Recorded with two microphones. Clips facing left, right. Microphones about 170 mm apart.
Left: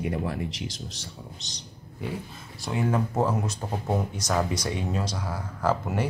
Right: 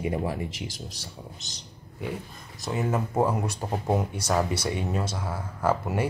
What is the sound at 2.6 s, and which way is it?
Speech, 5° right (ahead or behind).